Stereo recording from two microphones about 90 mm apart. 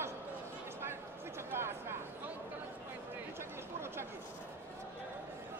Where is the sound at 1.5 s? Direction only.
25° right (ahead or behind).